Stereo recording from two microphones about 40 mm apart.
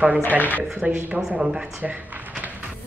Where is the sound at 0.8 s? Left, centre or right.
Right.